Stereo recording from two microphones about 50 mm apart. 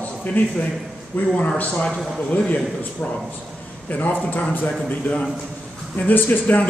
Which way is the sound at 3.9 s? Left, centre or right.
Left.